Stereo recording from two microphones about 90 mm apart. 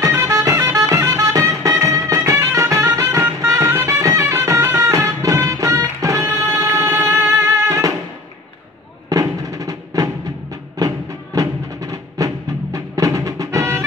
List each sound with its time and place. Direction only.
0.1 s music: 40° right (ahead or behind)
9.1 s music: 40° right (ahead or behind)